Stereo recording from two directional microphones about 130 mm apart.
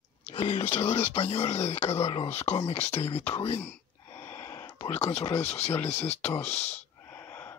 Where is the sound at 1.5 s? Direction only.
55° left (ahead or behind).